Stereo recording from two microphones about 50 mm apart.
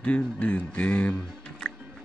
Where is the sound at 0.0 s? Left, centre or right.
Left.